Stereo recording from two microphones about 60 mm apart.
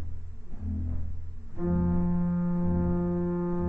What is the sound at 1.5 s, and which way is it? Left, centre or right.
Music, centre.